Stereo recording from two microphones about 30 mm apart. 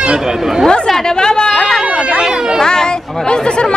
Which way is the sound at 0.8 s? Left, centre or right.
Centre.